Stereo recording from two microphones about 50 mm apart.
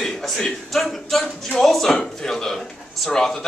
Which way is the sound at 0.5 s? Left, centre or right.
Centre.